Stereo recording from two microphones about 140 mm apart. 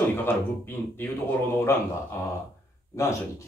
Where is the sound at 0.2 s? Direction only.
15° left (ahead or behind).